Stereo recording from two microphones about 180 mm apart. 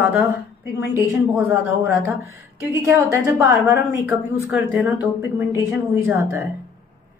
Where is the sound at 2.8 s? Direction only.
15° right (ahead or behind).